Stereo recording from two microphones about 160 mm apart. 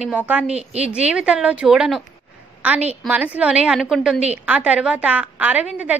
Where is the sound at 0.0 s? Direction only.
10° right (ahead or behind).